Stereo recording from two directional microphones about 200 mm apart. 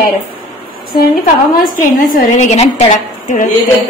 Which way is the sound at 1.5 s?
45° left (ahead or behind).